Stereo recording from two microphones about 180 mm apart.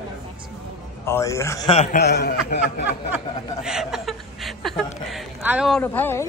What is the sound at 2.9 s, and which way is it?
Chuckle, 5° right (ahead or behind).